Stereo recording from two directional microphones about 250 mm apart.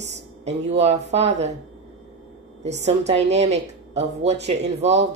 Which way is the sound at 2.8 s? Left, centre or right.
Right.